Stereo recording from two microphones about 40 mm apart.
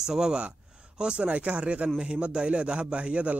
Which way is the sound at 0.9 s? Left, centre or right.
Right.